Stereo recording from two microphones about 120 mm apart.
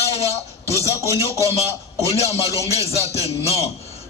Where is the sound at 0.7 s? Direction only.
25° right (ahead or behind).